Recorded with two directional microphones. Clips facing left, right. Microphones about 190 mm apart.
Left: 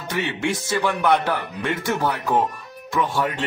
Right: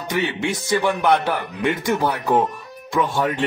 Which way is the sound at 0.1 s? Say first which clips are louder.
Right 1 dB; 15° right (ahead or behind).